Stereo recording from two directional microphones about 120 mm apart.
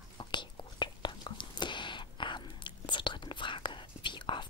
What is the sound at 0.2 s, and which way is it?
Whispering, 40° left (ahead or behind).